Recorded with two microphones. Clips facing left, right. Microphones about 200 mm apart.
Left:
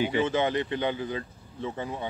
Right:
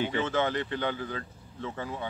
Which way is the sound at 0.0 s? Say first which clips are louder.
Left 3 dB; 15° left (ahead or behind).